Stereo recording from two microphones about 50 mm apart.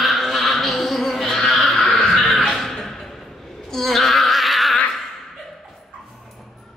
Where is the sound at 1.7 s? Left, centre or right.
Left.